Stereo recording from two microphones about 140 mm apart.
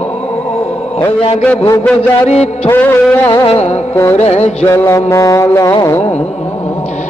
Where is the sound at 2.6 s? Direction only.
15° left (ahead or behind).